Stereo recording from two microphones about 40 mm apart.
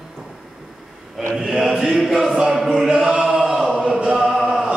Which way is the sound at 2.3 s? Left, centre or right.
Centre.